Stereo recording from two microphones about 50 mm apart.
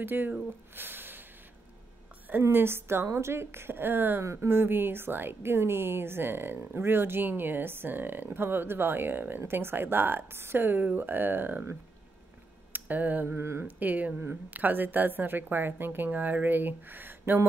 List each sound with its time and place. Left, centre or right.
0.0 s speech: right
0.7 s a sound: right
2.5 s a woman's voice: right
4.2 s a woman's voice: right
12.7 s speech: right
13.4 s speech: right
13.7 s speech: right
16.1 s speech: right